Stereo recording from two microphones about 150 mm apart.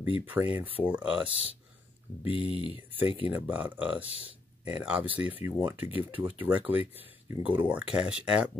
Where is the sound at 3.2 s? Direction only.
10° right (ahead or behind).